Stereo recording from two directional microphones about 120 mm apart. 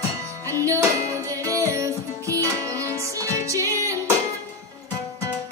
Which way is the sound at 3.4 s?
25° right (ahead or behind).